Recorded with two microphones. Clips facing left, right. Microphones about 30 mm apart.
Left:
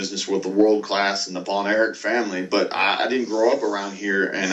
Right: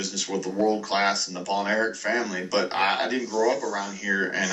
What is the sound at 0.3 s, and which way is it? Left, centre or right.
Speech, left.